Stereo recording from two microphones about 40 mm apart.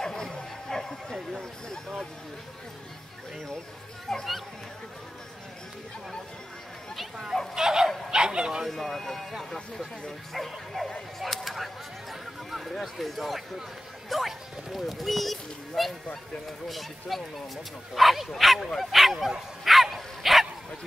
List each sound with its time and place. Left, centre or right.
0.0 s a sound: centre
4.1 s speech: centre
7.5 s dog: centre
8.1 s speech: centre
8.6 s speech: centre
11.1 s a sound: centre
14.0 s speech: centre
19.6 s dog: centre